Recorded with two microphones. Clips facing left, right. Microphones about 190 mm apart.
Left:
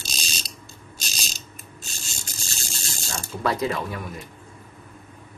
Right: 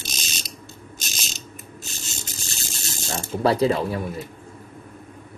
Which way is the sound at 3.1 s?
30° right (ahead or behind).